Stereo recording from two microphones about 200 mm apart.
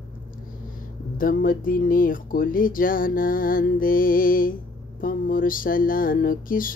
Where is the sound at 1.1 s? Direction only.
45° left (ahead or behind).